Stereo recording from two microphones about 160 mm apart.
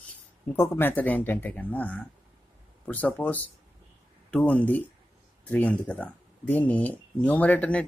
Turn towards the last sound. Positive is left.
turn(degrees=10)  # may be behind; listen again after turning